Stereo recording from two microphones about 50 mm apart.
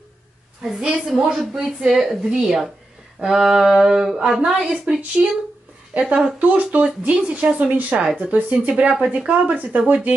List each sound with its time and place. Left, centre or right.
0.6 s a woman's voice: centre
9.5 s speech: right